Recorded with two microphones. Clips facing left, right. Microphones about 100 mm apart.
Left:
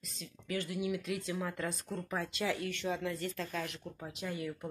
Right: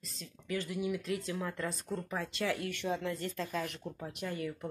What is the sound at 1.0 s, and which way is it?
Speech, 35° right (ahead or behind).